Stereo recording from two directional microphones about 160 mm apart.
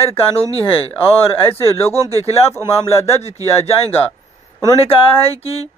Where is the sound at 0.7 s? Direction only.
35° left (ahead or behind).